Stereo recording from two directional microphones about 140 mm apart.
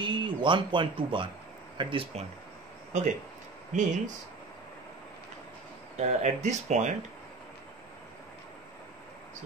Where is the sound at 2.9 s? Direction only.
60° right (ahead or behind).